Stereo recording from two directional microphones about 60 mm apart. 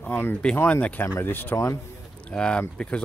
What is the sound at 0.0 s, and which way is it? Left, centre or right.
Speech, left.